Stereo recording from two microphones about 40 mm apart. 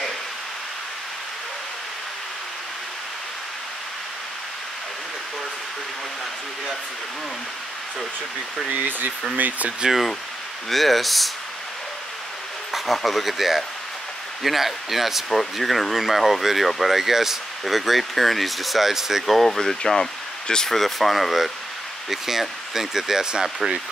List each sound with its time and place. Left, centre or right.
9.4 s speech: right
9.8 s speech: centre
12.7 s speech: centre
19.2 s speech: centre
20.7 s speech: centre